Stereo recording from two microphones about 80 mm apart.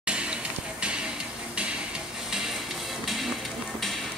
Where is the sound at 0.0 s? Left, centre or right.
Centre.